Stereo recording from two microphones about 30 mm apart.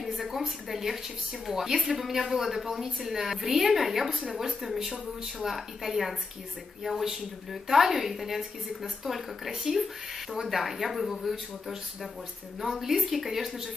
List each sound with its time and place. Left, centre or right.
0.2 s a woman's voice: centre
12.6 s a woman's voice: centre